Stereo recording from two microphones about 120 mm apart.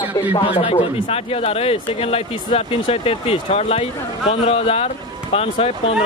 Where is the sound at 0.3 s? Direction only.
60° left (ahead or behind).